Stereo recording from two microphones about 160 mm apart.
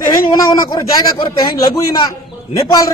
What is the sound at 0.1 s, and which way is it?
A man's voice, 25° left (ahead or behind).